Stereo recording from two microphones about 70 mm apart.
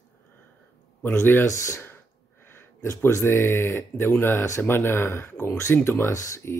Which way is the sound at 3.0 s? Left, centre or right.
Left.